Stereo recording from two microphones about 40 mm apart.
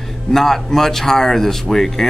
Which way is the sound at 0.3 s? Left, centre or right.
Centre.